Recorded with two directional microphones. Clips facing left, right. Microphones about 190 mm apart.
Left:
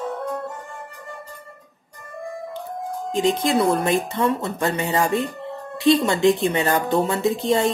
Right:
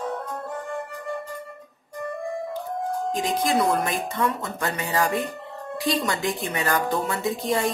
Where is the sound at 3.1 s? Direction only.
25° left (ahead or behind).